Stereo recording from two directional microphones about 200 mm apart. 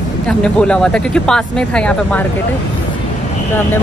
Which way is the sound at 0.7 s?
5° left (ahead or behind).